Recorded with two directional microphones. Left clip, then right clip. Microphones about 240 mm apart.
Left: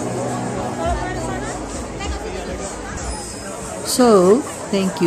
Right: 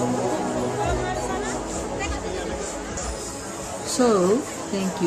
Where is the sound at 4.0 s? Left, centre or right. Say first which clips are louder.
Left 6 dB; left.